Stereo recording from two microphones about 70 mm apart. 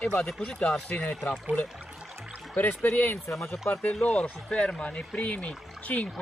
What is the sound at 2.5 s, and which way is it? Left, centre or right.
Speech, left.